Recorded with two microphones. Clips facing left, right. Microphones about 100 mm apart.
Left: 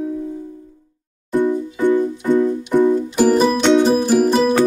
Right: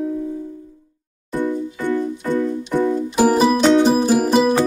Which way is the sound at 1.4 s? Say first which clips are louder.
Left 5 dB; 15° left (ahead or behind).